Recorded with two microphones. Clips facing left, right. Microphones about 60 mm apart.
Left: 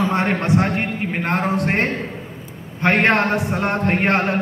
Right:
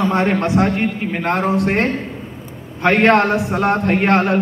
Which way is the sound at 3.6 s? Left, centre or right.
Left.